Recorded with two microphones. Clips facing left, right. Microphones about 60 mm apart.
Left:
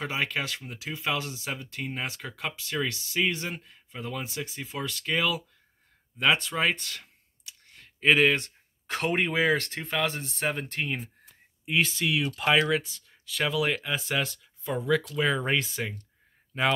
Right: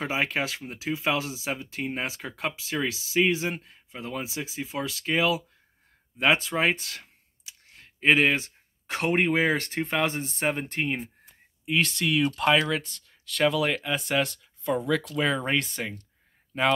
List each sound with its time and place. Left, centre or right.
0.0 s speech: centre
3.3 s speech: centre
8.3 s speech: centre
11.6 s speech: centre